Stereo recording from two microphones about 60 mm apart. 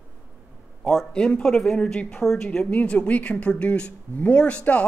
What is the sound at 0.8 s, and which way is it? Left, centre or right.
Speech, centre.